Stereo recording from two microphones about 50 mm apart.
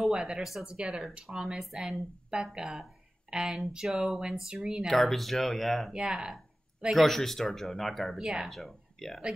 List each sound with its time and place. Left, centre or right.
0.1 s speech: centre
0.7 s speech: centre
4.8 s speech: centre
5.9 s speech: centre
6.9 s speech: centre
8.2 s speech: centre
8.5 s speech: centre